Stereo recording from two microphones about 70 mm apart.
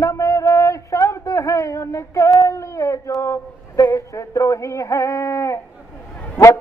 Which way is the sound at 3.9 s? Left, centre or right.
Left.